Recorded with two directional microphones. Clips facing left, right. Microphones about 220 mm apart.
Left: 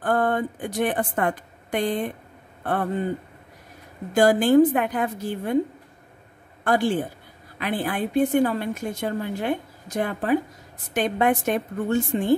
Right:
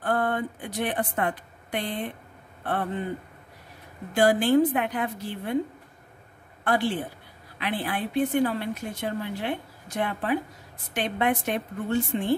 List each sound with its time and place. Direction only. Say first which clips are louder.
0.0 s a woman's voice: left 4 dB; 45° left (ahead or behind)
4.1 s a woman's voice: left 3 dB; 45° left (ahead or behind)
6.6 s a woman's voice: left 4 dB; 45° left (ahead or behind)